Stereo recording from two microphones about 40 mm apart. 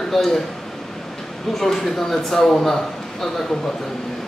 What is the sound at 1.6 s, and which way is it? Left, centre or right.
A man's voice, centre.